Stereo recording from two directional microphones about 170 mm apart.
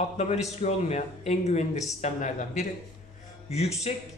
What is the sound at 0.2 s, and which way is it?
A woman's voice, 40° left (ahead or behind).